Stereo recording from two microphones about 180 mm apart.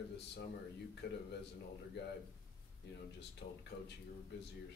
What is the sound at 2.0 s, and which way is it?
Speech, 70° left (ahead or behind).